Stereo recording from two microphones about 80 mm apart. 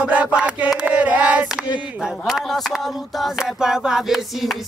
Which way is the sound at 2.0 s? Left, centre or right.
Centre.